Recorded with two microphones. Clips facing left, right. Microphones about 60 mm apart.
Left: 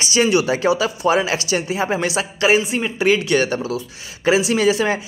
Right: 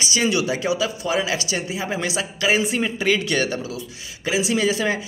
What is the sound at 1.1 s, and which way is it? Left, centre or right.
A man's voice, left.